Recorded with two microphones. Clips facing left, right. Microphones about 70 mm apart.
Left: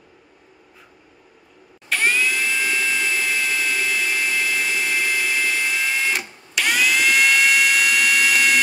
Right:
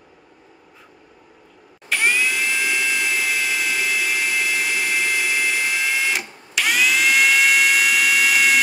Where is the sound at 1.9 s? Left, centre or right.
Centre.